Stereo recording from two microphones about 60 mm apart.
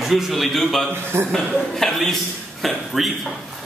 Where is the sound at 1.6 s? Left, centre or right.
Centre.